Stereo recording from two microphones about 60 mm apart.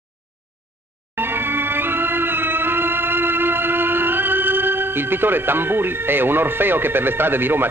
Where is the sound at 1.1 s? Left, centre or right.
Right.